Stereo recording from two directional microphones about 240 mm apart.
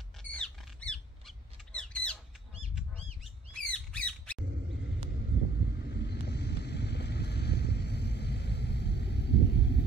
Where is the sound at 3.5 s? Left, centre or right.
Centre.